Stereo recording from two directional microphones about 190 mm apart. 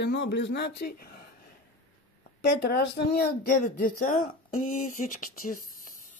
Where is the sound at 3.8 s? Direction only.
45° left (ahead or behind).